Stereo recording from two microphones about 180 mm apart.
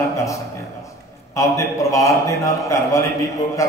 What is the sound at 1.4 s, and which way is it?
A man's voice, 15° left (ahead or behind).